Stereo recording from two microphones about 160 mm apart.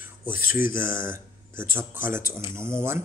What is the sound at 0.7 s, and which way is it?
Speech, 15° right (ahead or behind).